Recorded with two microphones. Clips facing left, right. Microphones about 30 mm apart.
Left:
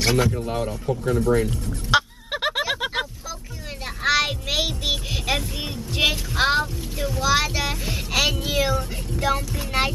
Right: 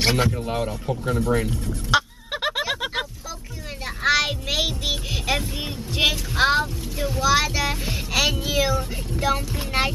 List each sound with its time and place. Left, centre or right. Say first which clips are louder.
0.0 s a man's voice: even; right
0.3 s a man's voice: even; centre
1.9 s a sound: left 1 dB; centre
7.2 s a man's voice: right 1 dB; centre